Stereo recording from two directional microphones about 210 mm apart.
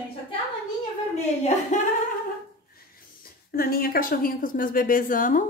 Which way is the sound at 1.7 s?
35° left (ahead or behind).